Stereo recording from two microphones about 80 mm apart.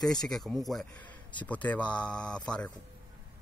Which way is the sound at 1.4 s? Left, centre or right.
Centre.